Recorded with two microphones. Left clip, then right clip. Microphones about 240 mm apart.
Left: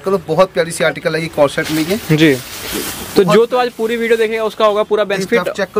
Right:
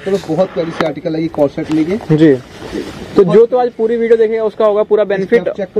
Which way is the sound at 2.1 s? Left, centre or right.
Left.